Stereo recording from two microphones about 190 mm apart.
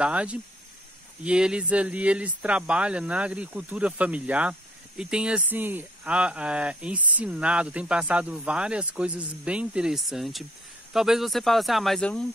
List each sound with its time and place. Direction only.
0.0 s speech: 5° right (ahead or behind)